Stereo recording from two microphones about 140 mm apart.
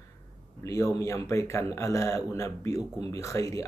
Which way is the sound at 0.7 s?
20° left (ahead or behind).